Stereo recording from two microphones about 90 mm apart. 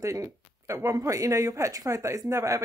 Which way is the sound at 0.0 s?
35° right (ahead or behind).